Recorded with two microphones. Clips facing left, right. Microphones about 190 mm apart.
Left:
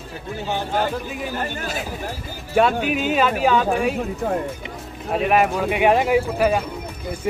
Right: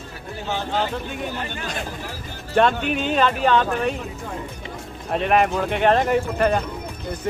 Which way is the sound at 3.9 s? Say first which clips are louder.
Left 8 dB; 50° left (ahead or behind).